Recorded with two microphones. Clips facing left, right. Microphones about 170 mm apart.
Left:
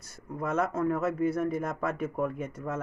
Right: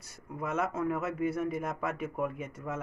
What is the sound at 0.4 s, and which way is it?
Speech, 5° right (ahead or behind).